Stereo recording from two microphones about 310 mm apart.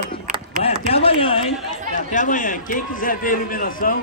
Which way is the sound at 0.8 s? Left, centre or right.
Centre.